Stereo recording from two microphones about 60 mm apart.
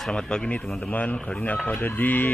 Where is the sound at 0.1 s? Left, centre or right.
Centre.